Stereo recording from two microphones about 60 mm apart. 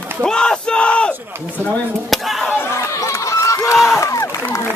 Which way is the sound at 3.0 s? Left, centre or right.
Left.